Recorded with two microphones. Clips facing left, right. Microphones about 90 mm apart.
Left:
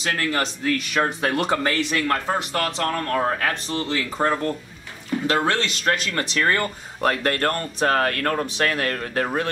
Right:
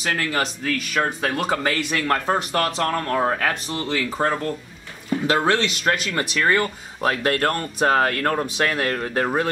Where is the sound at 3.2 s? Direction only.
10° right (ahead or behind).